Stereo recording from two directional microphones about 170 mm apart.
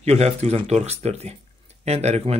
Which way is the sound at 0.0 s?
40° right (ahead or behind).